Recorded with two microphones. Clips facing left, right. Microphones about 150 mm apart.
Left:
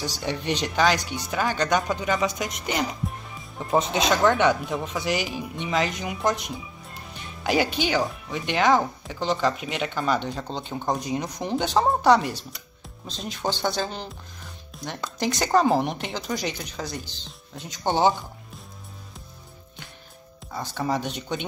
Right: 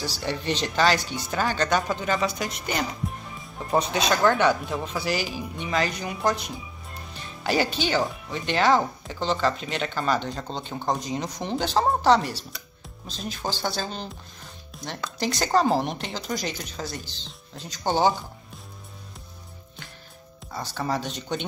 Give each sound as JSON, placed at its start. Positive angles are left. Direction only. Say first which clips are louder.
{"t": 0.0, "sound": "speech", "louder": "even", "side_deg": 15}
{"t": 17.6, "sound": "speech", "louder": "left 1 dB", "side_deg": 20}
{"t": 20.7, "sound": "speech", "louder": "left 2 dB", "side_deg": 15}